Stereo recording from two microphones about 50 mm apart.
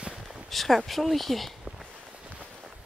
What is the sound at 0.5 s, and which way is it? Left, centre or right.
Speech, centre.